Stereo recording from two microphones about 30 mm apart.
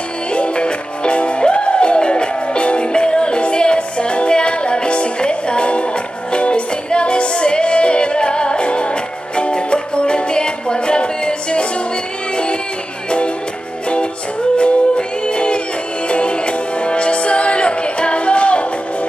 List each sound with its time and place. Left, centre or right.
0.3 s music: left
14.6 s music: left